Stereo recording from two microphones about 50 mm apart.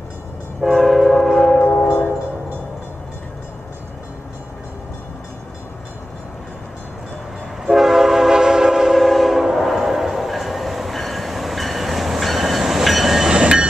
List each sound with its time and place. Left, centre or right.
0.6 s train: centre
7.6 s train: centre
13.3 s train: centre